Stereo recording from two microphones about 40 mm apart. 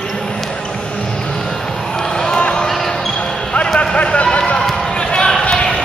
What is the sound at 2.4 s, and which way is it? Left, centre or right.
Basketball bounce, left.